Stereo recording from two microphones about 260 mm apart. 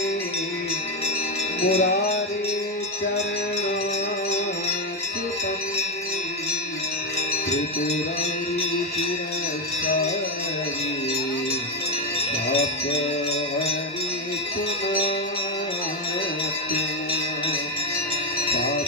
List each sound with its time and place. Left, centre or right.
1.6 s wind chime: left